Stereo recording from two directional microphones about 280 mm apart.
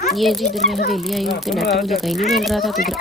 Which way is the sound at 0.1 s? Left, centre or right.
Centre.